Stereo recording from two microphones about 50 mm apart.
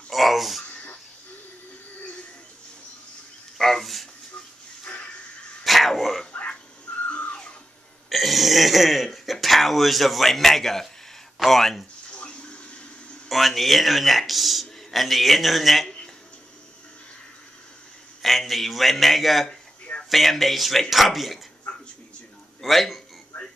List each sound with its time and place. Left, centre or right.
0.1 s a sound: centre
3.5 s a sound: centre
4.9 s a sound: left
5.6 s dog: centre
7.1 s music: left
8.1 s throat clearing: centre
11.3 s speech: centre
12.2 s water: centre
13.3 s a man's voice: centre
18.2 s a man's voice: centre
21.7 s a sound: left
22.6 s speech: centre
23.3 s music: left